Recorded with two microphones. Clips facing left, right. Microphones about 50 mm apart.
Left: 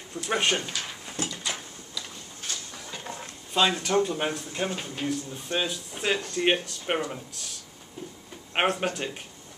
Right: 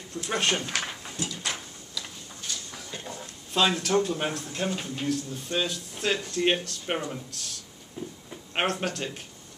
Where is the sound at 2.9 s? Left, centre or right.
Left.